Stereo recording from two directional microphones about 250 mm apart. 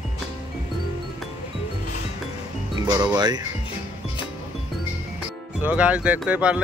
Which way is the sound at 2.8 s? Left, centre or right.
Centre.